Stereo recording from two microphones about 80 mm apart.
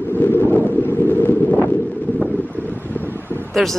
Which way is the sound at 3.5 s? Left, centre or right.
Centre.